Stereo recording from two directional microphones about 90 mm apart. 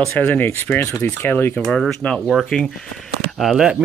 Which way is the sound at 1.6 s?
10° left (ahead or behind).